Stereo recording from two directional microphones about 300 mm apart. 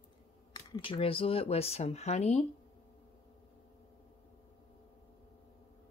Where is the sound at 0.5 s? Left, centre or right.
Centre.